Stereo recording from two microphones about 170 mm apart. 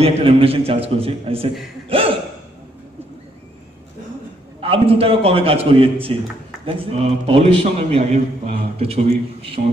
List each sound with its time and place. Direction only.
0.0 s a man's voice: 35° right (ahead or behind)
4.6 s a man's voice: 35° right (ahead or behind)